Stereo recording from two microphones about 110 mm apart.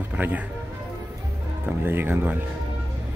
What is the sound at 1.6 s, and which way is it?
Speech, 20° right (ahead or behind).